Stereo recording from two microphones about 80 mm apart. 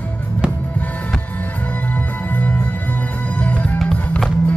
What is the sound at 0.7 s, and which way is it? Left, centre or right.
Music, centre.